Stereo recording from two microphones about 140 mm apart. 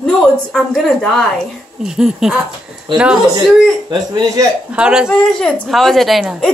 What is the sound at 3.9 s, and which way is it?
Speech, 30° right (ahead or behind).